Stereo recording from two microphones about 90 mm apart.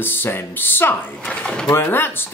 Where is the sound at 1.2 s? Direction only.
10° left (ahead or behind).